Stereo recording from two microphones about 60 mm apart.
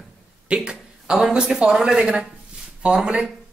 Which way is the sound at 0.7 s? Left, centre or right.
Centre.